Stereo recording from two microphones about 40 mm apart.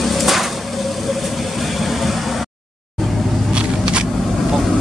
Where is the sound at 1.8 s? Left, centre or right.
Centre.